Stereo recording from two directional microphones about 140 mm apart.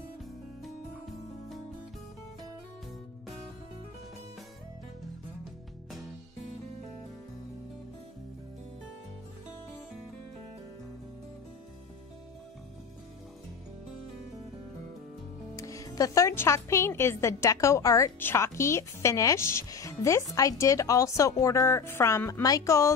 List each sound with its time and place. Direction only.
15.5 s speech: 25° left (ahead or behind)